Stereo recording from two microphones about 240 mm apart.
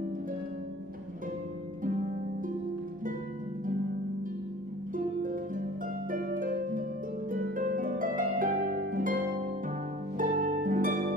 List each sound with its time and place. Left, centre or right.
4.9 s harp: right